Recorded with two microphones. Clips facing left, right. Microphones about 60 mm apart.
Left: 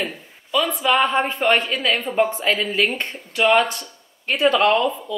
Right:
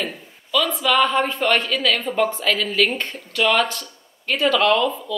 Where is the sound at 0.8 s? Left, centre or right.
Left.